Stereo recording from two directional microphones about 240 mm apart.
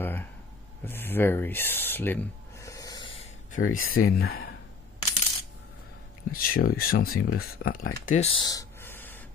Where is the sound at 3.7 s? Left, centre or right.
Left.